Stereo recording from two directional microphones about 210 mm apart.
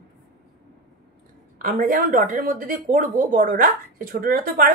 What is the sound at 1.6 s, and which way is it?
A woman's voice, 40° right (ahead or behind).